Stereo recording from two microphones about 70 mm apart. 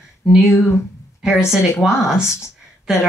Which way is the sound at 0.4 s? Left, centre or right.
Left.